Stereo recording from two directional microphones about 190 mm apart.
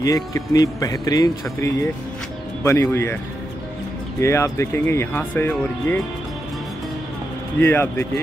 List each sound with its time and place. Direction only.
0.0 s speech: 15° left (ahead or behind)
4.2 s speech: 15° left (ahead or behind)
7.6 s speech: 10° left (ahead or behind)